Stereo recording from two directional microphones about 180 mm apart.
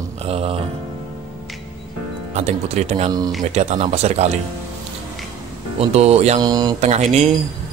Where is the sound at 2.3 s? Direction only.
40° right (ahead or behind).